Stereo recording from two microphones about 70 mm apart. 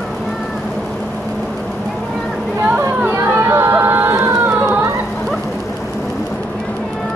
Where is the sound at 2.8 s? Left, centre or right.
Right.